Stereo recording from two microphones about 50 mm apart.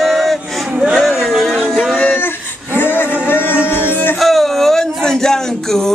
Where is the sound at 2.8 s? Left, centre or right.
Left.